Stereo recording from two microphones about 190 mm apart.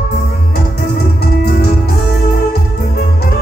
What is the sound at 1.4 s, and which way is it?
Music, 55° left (ahead or behind).